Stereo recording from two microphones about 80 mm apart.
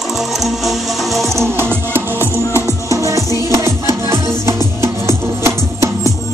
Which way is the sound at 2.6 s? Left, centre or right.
Right.